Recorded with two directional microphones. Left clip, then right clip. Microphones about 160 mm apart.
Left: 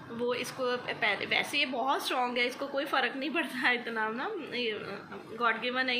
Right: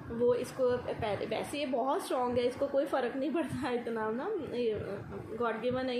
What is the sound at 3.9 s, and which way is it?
Speech, 25° left (ahead or behind).